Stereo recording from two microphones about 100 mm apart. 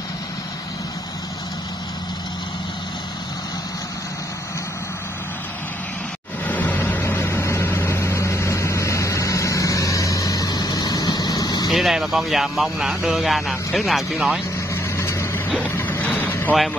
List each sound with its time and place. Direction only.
6.4 s vehicle: 15° left (ahead or behind); by 11.7 s 40° left (ahead or behind)
11.7 s speech: centre (ahead or behind)
14.7 s vehicle: 25° left (ahead or behind)